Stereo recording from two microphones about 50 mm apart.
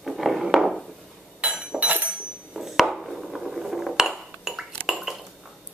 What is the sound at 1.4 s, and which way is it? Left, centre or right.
Chink, right.